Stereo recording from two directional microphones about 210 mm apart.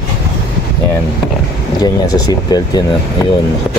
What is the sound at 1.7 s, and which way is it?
Speech, 20° left (ahead or behind).